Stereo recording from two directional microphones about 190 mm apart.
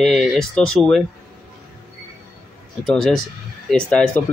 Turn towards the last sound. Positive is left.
turn(degrees=5)  # may be behind; listen again after turning